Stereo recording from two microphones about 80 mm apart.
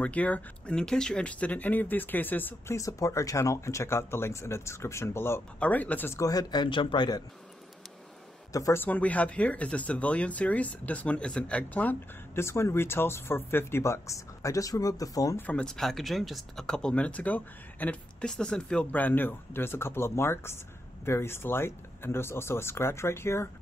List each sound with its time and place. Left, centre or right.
0.0 s speech: centre
2.7 s speech: left
5.6 s speech: centre
6.1 s speech: left
8.7 s speech: left
12.4 s speech: left
15.5 s speech: centre; by 23.5 s left